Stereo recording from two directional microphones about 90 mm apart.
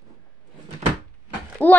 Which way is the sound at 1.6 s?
20° left (ahead or behind).